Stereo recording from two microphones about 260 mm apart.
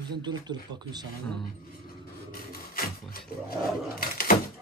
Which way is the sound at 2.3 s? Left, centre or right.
Left.